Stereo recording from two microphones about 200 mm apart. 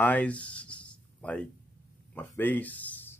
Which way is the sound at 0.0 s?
5° left (ahead or behind).